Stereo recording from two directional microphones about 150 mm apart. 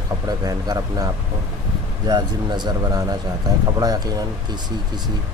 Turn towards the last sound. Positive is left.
turn(degrees=-25)  # may be behind; listen again after turning